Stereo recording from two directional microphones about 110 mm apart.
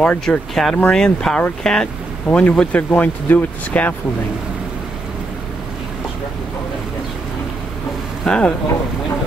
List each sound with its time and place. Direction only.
0.0 s speech: 10° left (ahead or behind)
8.3 s speech: 10° left (ahead or behind)